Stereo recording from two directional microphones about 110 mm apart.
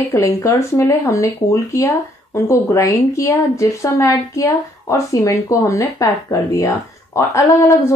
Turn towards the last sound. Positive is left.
turn(degrees=25)  # may be behind; listen again after turning